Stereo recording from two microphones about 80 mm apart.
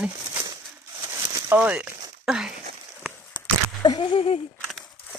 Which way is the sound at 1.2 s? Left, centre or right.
Right.